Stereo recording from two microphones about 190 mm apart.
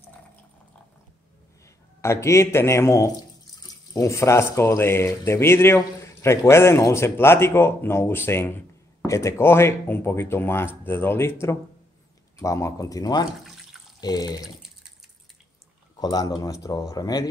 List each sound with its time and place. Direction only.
2.0 s speech: 15° left (ahead or behind)
12.4 s speech: 15° left (ahead or behind)
16.0 s speech: 20° left (ahead or behind)